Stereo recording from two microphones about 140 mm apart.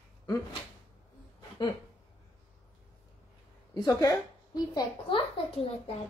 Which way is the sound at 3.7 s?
25° left (ahead or behind).